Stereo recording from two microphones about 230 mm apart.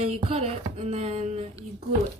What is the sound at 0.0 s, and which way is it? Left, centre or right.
Music, right.